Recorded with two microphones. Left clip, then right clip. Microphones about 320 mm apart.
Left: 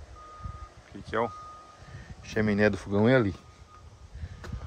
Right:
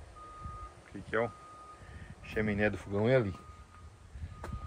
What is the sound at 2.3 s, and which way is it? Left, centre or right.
Speech, left.